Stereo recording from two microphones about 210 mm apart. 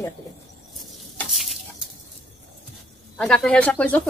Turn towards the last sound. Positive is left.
turn(degrees=5)  # may be behind; listen again after turning